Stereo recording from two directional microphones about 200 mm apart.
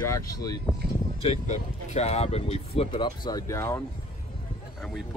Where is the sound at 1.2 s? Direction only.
30° left (ahead or behind); by 3.8 s 15° left (ahead or behind).